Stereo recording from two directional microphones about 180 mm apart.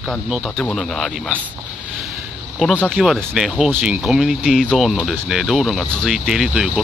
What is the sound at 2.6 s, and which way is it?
Speech, 5° left (ahead or behind).